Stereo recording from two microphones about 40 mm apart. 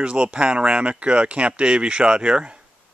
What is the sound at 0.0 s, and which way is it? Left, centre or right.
Speech, right.